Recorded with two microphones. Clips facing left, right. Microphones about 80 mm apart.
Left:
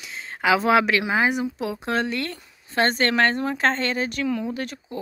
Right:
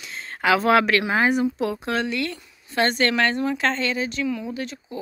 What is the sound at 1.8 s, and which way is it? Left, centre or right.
Speech, left.